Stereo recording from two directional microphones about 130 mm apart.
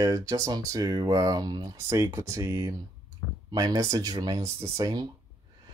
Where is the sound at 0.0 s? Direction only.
25° right (ahead or behind).